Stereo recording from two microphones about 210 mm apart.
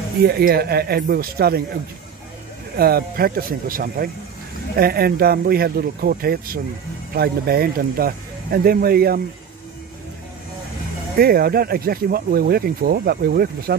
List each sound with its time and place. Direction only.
0.2 s speech: 50° right (ahead or behind)
2.8 s speech: 45° right (ahead or behind)
11.1 s speech: 45° right (ahead or behind)